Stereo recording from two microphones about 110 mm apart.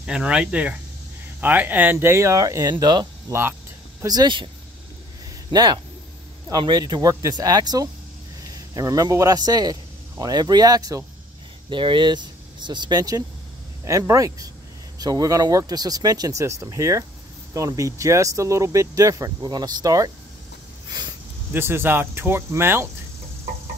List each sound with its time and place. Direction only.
0.0 s speech: 10° right (ahead or behind); by 2.7 s 30° right (ahead or behind)
2.7 s a man's voice: 40° right (ahead or behind)
3.3 s speech: 20° right (ahead or behind)
4.0 s a man's voice: 40° right (ahead or behind)
5.5 s a man's voice: 40° right (ahead or behind)
11.7 s a man's voice: 50° right (ahead or behind)
21.5 s speech: 20° right (ahead or behind)